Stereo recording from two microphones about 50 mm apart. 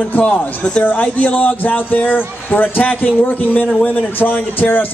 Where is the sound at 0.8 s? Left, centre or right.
Left.